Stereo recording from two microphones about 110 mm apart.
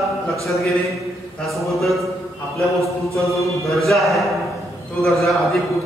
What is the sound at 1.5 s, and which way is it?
Speech, centre (ahead or behind).